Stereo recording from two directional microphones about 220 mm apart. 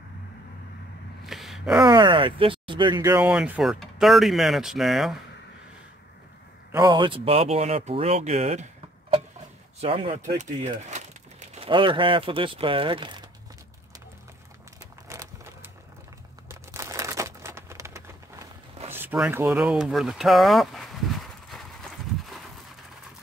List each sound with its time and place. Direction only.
1.2 s gasp: centre (ahead or behind)
1.8 s speech: 20° right (ahead or behind); by 5.2 s centre (ahead or behind)
6.7 s speech: 20° right (ahead or behind)
9.8 s speech: 25° right (ahead or behind)
15.0 s a sound: 10° right (ahead or behind)
16.4 s crumpling: 10° right (ahead or behind)
18.9 s a sound: 10° right (ahead or behind)